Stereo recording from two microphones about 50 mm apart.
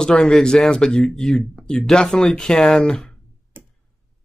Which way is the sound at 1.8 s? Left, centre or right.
Centre.